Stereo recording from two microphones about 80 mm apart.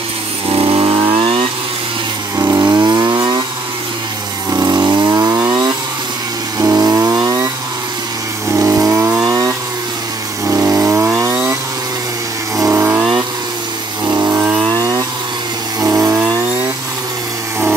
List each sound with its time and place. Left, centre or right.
0.6 s vehicle: right
2.3 s vehicle: right
2.6 s vehicle: right
4.6 s vehicle: right
6.6 s chainsaw: right
8.5 s vehicle: right
9.3 s vehicle: right
10.4 s chainsaw: right
12.5 s vehicle: right
14.0 s vehicle: right
14.7 s chainsaw: right
15.8 s vehicle: right